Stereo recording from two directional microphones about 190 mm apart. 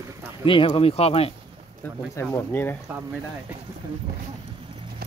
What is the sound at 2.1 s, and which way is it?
Speech, 10° left (ahead or behind).